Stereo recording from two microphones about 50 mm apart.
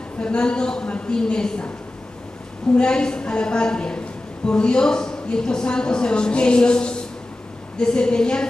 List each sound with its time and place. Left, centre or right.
0.2 s a woman's voice: centre
2.7 s a woman's voice: centre